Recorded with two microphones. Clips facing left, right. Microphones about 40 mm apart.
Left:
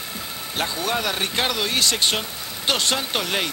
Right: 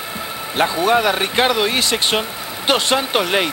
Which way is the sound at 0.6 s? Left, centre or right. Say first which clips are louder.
Right 9 dB; centre.